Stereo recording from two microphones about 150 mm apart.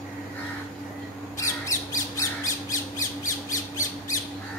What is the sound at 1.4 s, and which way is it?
Squawk, 20° left (ahead or behind).